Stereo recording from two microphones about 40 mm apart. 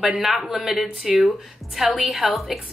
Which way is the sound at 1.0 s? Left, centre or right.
Right.